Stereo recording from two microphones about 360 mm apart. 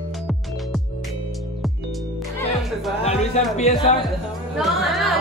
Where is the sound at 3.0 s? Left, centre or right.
Centre.